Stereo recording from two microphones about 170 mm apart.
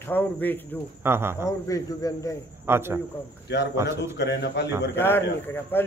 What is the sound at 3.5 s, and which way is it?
A man's voice, 90° left.